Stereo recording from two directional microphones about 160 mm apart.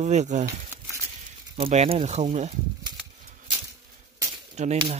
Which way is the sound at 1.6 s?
40° right (ahead or behind).